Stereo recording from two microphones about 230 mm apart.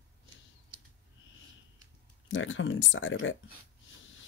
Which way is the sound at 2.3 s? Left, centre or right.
Left.